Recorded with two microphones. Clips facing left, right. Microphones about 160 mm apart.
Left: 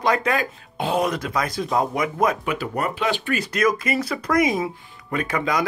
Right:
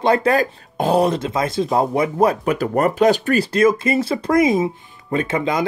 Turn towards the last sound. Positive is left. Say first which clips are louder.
# right 4 dB
turn(degrees=-25)  # may be behind; listen again after turning